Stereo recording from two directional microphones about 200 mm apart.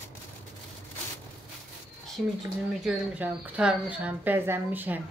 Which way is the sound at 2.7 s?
Centre (ahead or behind).